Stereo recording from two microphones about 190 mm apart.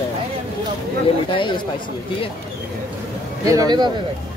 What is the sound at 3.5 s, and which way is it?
Speech, 20° right (ahead or behind).